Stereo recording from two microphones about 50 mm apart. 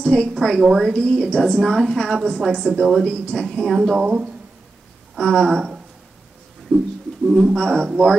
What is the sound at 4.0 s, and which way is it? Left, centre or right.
Speech, right.